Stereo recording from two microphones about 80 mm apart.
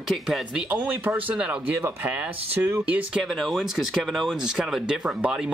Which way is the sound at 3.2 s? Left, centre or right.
Centre.